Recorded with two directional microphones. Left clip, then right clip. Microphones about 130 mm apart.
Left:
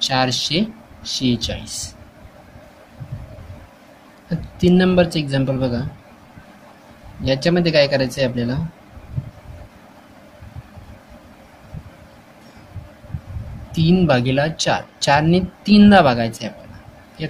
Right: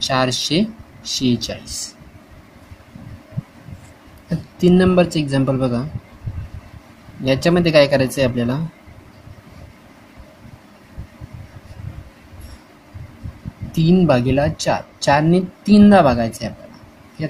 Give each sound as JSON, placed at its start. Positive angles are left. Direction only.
{"t": 0.0, "sound": "speech", "side_deg": -40}
{"t": 4.3, "sound": "speech", "side_deg": -35}
{"t": 7.2, "sound": "speech", "side_deg": -40}
{"t": 13.7, "sound": "speech", "side_deg": -30}